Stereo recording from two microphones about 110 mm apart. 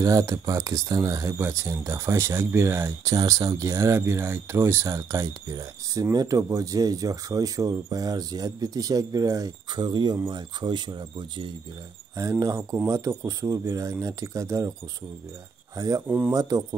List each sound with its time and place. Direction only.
0.0 s speech: 30° right (ahead or behind); by 11.5 s 45° right (ahead or behind)
12.2 s speech: 30° right (ahead or behind)
15.7 s speech: 35° right (ahead or behind)
16.1 s speech: 20° right (ahead or behind)
16.3 s speech: 35° right (ahead or behind)